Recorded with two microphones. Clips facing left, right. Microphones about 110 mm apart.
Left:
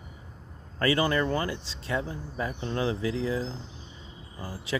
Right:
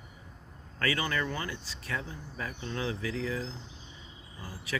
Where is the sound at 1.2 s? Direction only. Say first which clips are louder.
Left 7 dB; 40° left (ahead or behind).